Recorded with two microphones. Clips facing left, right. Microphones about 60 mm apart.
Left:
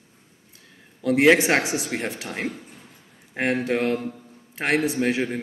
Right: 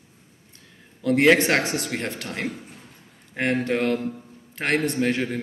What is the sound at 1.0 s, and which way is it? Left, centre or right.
A man's voice, centre.